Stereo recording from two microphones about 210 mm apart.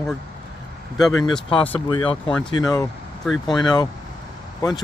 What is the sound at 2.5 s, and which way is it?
Speech, 20° left (ahead or behind).